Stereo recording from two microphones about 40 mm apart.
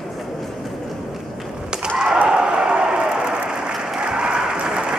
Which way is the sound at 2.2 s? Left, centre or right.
Right.